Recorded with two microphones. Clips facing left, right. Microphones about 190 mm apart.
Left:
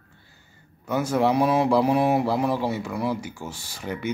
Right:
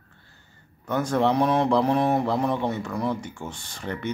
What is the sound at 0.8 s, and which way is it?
A man's voice, 5° left (ahead or behind).